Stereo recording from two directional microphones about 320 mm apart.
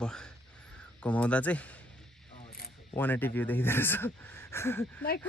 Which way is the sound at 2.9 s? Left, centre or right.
Centre.